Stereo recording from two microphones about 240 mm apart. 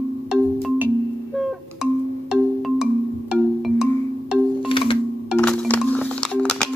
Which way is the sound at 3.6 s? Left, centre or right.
Centre.